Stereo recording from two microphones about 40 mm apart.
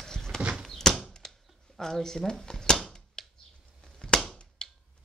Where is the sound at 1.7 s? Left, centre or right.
Centre.